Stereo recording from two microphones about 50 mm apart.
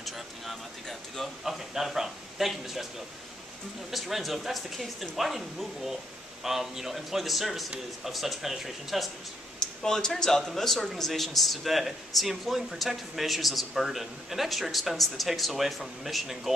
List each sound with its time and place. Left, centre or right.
0.0 s speech: centre
1.4 s speech: centre
3.9 s speech: centre
9.6 s speech: centre